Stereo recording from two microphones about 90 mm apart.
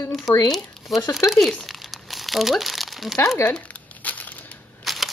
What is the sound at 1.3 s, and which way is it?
Crumpling, centre (ahead or behind).